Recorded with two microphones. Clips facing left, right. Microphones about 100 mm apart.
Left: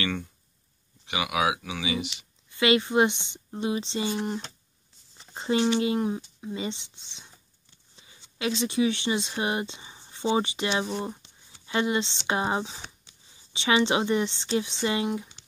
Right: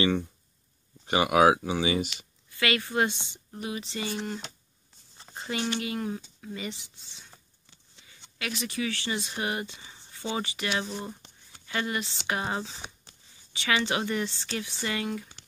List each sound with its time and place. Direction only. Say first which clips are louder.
1.0 s speech: right 6 dB; 40° right (ahead or behind)
2.5 s speech: left 6 dB; 20° left (ahead or behind)
8.4 s speech: left 7 dB; 25° left (ahead or behind)
11.2 s a sound: right 3 dB; 50° right (ahead or behind)
11.6 s speech: left 5 dB; 25° left (ahead or behind)
13.1 s a sound: right 3 dB; 50° right (ahead or behind)
13.5 s speech: left 5 dB; 20° left (ahead or behind)